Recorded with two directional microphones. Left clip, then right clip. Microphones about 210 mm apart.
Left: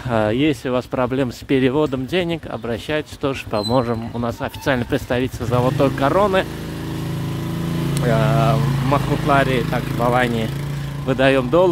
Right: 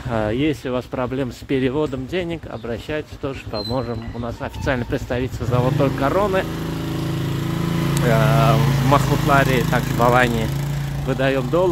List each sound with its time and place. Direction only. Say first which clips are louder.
0.1 s speech: left 3 dB; 25° left (ahead or behind)
4.6 s speech: left 3 dB; 20° left (ahead or behind)
8.1 s speech: right 1 dB; 10° left (ahead or behind)
9.7 s speech: right 2 dB; centre (ahead or behind)
11.1 s speech: left 4 dB; 25° left (ahead or behind)